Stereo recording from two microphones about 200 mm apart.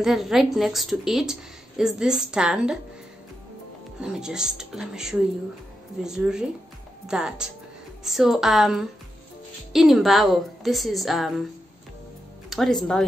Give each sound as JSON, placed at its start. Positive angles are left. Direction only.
{"t": 0.0, "sound": "a woman's voice", "side_deg": 0}
{"t": 4.0, "sound": "a woman's voice", "side_deg": -5}
{"t": 12.4, "sound": "speech", "side_deg": 0}